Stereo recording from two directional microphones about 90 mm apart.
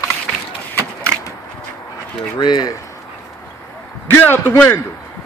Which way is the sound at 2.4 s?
50° left (ahead or behind).